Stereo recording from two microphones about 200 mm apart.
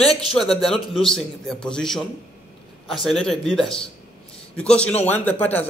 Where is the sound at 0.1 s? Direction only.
Centre (ahead or behind).